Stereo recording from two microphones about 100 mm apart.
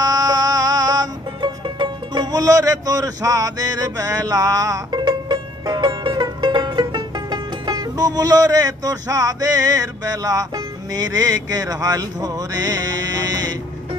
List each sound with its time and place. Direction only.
0.0 s music: 40° right (ahead or behind)
5.0 s music: 50° right (ahead or behind)